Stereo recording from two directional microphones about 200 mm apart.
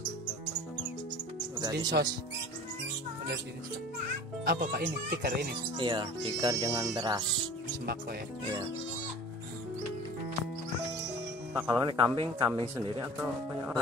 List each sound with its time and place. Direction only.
1.6 s speech: 20° right (ahead or behind)
4.5 s speech: 45° right (ahead or behind)
5.8 s speech: 25° right (ahead or behind)
11.5 s speech: 10° right (ahead or behind)
11.8 s speech: 20° right (ahead or behind)
13.0 s speech: 10° right (ahead or behind)